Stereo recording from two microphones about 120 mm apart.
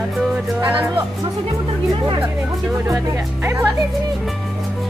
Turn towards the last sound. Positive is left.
turn(degrees=-20)  # may be behind; listen again after turning